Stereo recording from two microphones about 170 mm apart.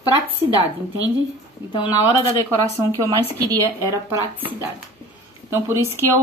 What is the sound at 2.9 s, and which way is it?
A woman's voice, 20° right (ahead or behind).